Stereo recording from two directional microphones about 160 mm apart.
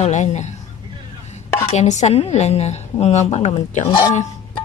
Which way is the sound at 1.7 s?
45° left (ahead or behind).